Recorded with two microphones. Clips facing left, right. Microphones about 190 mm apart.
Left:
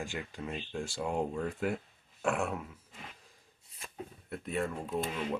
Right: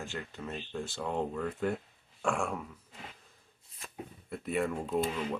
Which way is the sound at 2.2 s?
5° left (ahead or behind).